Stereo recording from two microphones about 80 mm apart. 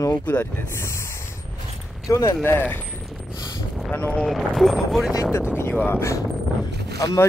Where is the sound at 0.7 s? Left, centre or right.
Left.